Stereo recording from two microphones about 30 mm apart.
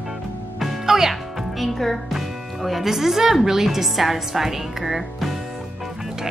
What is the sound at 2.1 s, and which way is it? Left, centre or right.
Music, centre.